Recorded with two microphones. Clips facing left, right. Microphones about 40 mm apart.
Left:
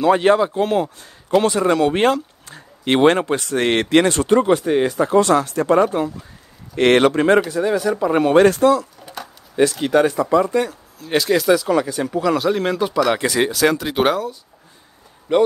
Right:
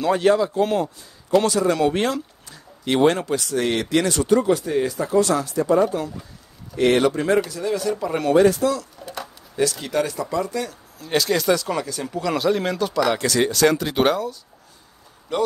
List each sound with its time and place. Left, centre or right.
0.1 s speech: left
0.6 s speech: centre
1.9 s speech: left
7.4 s speech: left
8.4 s speech: left
9.0 s a sound: centre
9.6 s speech: left
10.7 s speech: centre
11.8 s speech: left
12.2 s speech: centre
12.7 s speech: centre
15.3 s speech: left